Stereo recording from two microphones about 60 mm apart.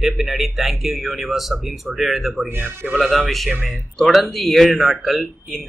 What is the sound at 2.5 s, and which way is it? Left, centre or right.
Speech, right.